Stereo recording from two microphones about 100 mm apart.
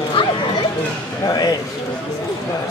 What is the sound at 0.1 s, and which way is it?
Children playing, 55° left (ahead or behind).